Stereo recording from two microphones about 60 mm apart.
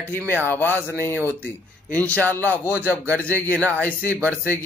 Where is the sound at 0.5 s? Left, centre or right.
Left.